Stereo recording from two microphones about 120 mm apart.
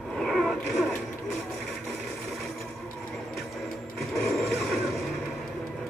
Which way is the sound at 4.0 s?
Centre (ahead or behind).